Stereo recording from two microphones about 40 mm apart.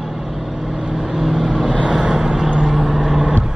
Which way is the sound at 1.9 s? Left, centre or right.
Right.